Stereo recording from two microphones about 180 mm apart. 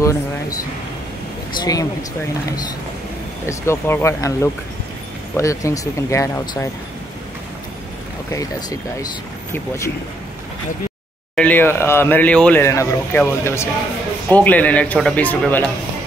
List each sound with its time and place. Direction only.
0.0 s speech: 15° left (ahead or behind)
1.6 s speech: 20° left (ahead or behind)
3.4 s speech: 15° left (ahead or behind)
8.3 s speech: 20° left (ahead or behind)
11.3 s speech: 10° left (ahead or behind)